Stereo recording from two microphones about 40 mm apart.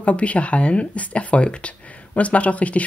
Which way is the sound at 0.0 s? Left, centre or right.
Left.